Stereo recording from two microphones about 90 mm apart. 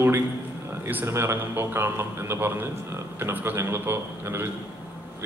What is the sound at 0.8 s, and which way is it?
A man's voice, 25° right (ahead or behind).